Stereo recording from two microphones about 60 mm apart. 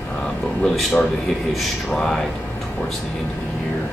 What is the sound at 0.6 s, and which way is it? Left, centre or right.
Speech, centre.